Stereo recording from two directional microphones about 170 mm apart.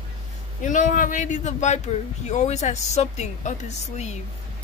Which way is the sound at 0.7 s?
50° left (ahead or behind).